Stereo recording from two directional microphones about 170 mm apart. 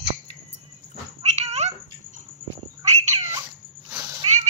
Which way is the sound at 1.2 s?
40° right (ahead or behind).